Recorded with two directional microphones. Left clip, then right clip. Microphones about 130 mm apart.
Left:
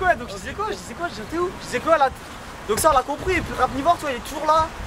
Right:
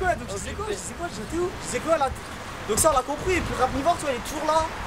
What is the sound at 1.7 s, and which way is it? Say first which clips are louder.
Speech: left 6 dB; 5° right (ahead or behind).